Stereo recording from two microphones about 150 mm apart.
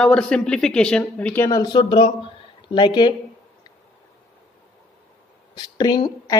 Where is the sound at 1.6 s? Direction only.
30° left (ahead or behind).